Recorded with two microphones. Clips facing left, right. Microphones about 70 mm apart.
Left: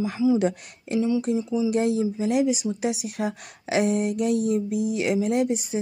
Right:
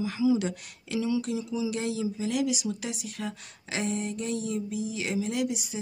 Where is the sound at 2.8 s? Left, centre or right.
Left.